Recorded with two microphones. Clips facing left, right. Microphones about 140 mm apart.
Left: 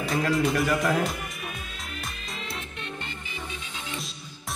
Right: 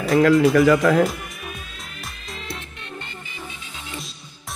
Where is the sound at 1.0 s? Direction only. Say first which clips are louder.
Right 5 dB; centre (ahead or behind).